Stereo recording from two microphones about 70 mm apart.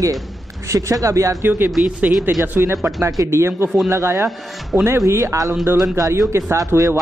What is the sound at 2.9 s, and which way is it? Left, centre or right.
A woman's voice, right.